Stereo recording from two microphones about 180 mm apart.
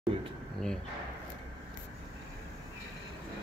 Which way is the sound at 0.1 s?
30° right (ahead or behind).